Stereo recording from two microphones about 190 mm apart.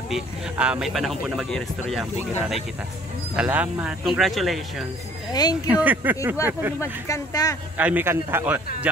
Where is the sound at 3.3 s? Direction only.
10° right (ahead or behind).